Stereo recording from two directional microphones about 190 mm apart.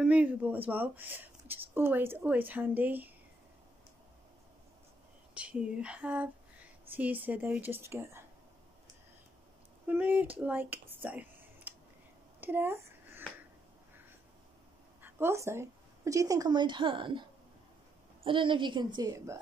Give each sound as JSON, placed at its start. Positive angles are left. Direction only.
{"t": 0.0, "sound": "speech", "side_deg": -5}
{"t": 5.3, "sound": "speech", "side_deg": -5}
{"t": 9.8, "sound": "speech", "side_deg": -10}
{"t": 12.4, "sound": "a sound", "side_deg": -10}
{"t": 15.0, "sound": "a woman's voice", "side_deg": -10}
{"t": 18.2, "sound": "a woman's voice", "side_deg": -25}